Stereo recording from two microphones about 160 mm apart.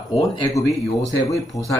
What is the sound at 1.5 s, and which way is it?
Speech, 20° left (ahead or behind).